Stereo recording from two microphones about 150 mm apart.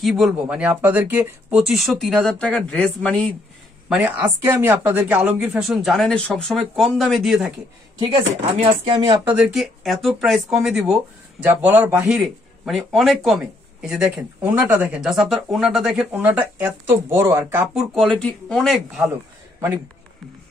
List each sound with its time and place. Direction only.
0.0 s speech: 5° right (ahead or behind)
1.7 s speech: centre (ahead or behind)
4.2 s speech: 20° right (ahead or behind); by 7.5 s 5° right (ahead or behind)
8.5 s speech: 35° right (ahead or behind)
9.3 s speech: centre (ahead or behind)
12.2 s speech: centre (ahead or behind); by 17.6 s 15° right (ahead or behind)
17.7 s speech: 5° left (ahead or behind)